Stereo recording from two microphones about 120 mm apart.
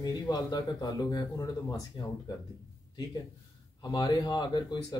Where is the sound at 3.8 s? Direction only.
35° left (ahead or behind).